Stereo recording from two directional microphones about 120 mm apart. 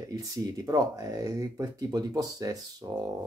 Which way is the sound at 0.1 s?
30° right (ahead or behind).